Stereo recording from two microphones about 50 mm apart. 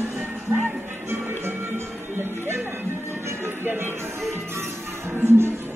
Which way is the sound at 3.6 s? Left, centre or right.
Right.